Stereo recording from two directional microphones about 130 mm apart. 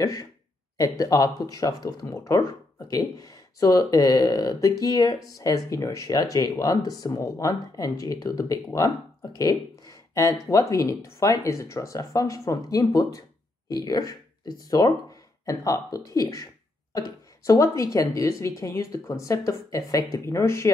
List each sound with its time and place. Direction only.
0.0 s speech: 25° left (ahead or behind)
17.5 s speech: 25° left (ahead or behind)